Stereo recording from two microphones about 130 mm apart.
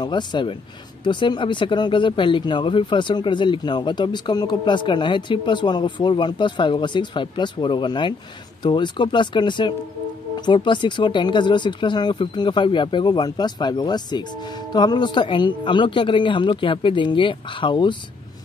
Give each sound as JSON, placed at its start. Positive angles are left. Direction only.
{"t": 0.0, "sound": "speech", "side_deg": 35}